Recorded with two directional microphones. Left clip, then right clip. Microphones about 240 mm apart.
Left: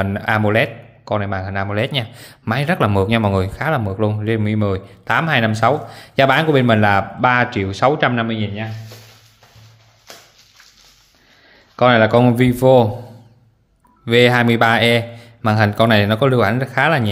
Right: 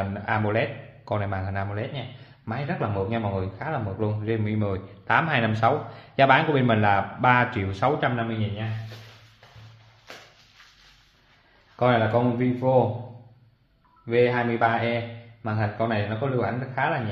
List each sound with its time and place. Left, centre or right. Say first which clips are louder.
0.0 s speech: left 9 dB; left
11.7 s speech: left 9 dB; left
14.0 s speech: left 9 dB; left